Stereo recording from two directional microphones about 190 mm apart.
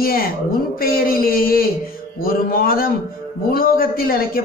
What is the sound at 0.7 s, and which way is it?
A man's voice, 50° left (ahead or behind).